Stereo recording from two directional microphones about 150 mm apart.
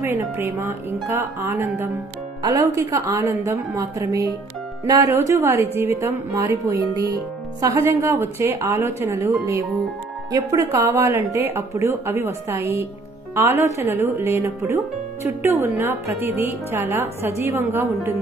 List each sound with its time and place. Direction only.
0.0 s a woman's voice: 15° right (ahead or behind)